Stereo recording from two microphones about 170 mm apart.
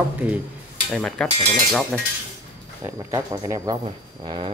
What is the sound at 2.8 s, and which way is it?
Speech, 20° right (ahead or behind).